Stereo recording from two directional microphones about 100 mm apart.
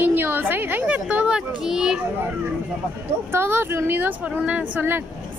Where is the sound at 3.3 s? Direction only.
25° right (ahead or behind).